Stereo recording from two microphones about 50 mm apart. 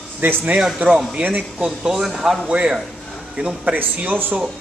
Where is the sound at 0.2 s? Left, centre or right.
Right.